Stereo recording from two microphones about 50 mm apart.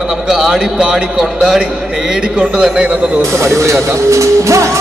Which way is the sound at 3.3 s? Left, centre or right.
Right.